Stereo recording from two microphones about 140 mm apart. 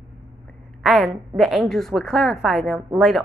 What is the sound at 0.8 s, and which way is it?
A woman's voice, centre (ahead or behind).